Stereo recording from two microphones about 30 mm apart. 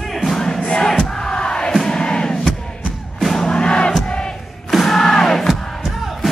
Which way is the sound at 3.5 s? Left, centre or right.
Left.